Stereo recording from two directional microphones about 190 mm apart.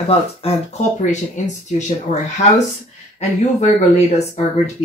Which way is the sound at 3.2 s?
35° left (ahead or behind).